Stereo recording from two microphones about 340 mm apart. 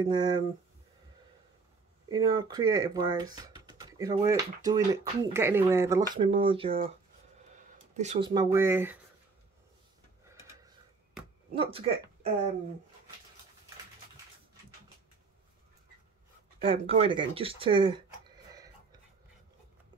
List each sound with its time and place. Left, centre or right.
0.0 s speech: centre
2.0 s speech: centre
11.5 s speech: centre
16.6 s speech: centre
18.5 s a sound: centre